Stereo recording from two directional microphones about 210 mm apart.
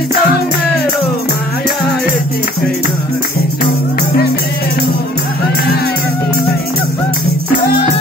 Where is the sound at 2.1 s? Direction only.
40° left (ahead or behind).